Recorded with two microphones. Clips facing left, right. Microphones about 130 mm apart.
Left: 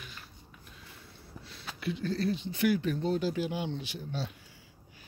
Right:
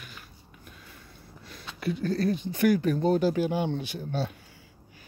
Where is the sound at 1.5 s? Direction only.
45° right (ahead or behind).